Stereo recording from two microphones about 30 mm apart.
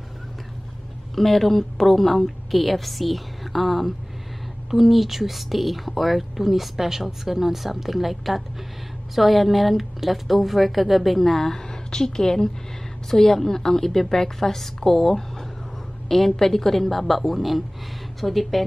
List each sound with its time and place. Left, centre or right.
1.1 s a woman's voice: centre